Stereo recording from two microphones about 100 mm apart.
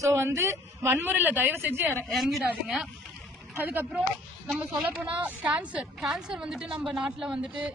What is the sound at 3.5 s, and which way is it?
A woman's voice, 20° right (ahead or behind).